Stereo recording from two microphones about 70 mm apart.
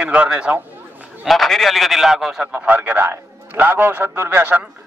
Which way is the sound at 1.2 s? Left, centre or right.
Centre.